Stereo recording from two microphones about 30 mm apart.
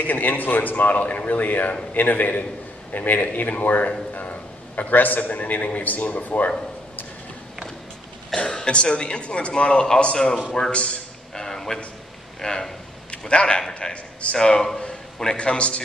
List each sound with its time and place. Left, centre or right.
0.0 s a man's voice: left
2.0 s a man's voice: left
4.1 s a man's voice: left
8.5 s speech: left
10.7 s speech: left
11.3 s a sound: centre
12.4 s speech: left
13.3 s speech: left
13.8 s speech: centre
14.8 s a sound: left
15.3 s speech: left